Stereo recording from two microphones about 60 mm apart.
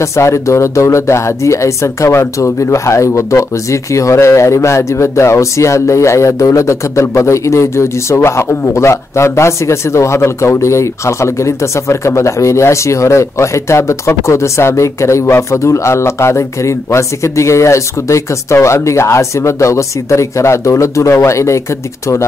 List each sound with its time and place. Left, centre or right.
0.0 s speech: left